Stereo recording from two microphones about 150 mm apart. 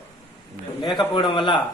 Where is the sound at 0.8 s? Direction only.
30° left (ahead or behind).